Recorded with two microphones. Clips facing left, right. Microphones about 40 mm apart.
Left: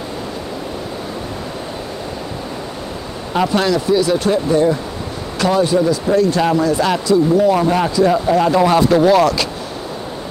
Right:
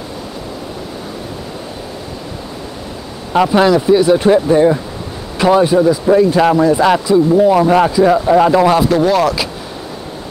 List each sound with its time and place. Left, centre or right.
3.3 s speech: centre
8.6 s speech: centre